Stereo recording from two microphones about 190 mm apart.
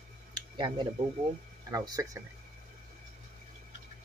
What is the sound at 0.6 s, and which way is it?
Speech, 25° right (ahead or behind).